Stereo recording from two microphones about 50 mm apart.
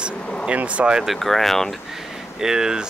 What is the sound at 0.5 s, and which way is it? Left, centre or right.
Speech, right.